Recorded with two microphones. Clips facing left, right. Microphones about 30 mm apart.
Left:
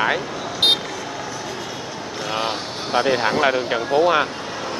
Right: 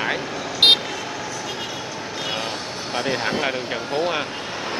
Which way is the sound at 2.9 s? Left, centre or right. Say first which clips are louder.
Left 5 dB; centre.